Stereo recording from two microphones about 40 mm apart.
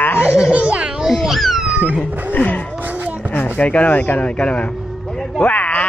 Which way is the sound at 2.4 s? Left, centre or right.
Left.